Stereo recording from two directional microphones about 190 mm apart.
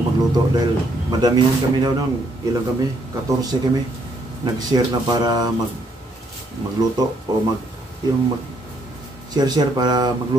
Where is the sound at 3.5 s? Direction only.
20° right (ahead or behind).